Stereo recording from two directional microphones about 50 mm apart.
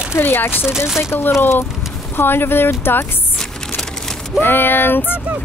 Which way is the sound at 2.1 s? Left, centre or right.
Left.